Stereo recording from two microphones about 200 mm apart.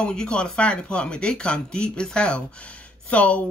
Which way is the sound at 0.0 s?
5° left (ahead or behind).